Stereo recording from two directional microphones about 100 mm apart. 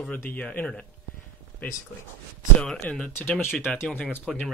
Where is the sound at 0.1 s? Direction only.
20° left (ahead or behind).